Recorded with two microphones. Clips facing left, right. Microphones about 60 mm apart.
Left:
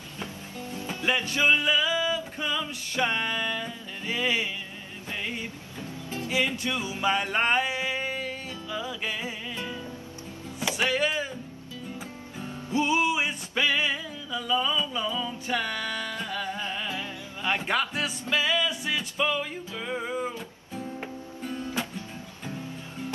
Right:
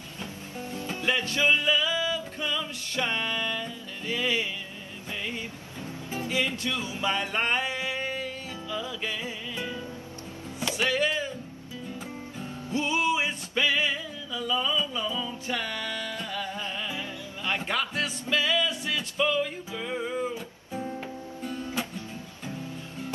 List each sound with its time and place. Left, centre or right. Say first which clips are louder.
0.7 s music: left 1 dB; centre
6.3 s music: left 2 dB; centre
10.6 s music: even; centre
12.4 s music: left 4 dB; centre